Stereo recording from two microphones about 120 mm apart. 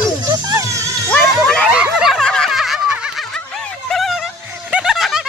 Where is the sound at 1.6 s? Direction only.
5° right (ahead or behind).